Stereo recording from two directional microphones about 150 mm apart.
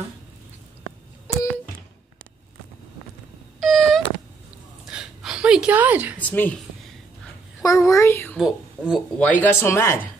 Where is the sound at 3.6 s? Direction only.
Centre (ahead or behind).